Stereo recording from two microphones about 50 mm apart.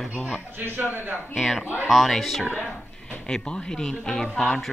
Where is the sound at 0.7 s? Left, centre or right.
Right.